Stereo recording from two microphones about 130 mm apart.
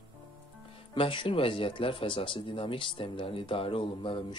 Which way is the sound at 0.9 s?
40° left (ahead or behind).